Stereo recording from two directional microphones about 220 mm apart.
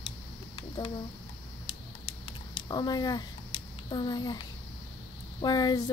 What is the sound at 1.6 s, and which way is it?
Typing, 25° left (ahead or behind).